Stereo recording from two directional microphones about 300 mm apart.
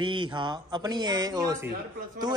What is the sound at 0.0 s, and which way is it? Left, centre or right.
Speech, centre.